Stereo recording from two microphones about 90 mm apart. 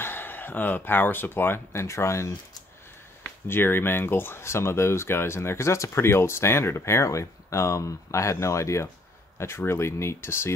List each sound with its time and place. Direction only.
0.0 s speech: 25° left (ahead or behind)